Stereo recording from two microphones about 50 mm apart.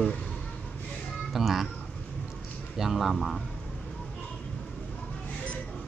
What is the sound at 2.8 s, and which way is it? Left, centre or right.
Speech, centre.